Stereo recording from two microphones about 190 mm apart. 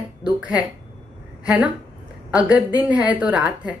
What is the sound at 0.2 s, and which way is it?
A woman's voice, 5° right (ahead or behind).